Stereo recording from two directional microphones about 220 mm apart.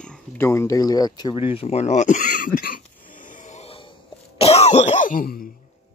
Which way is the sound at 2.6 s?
40° left (ahead or behind).